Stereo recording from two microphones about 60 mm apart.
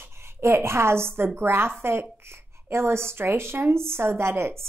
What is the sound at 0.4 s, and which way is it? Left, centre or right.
A woman's voice, right.